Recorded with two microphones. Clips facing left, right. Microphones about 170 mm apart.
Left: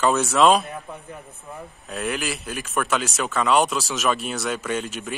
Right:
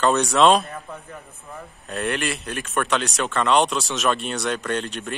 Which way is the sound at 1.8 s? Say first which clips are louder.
Right 2 dB; centre (ahead or behind).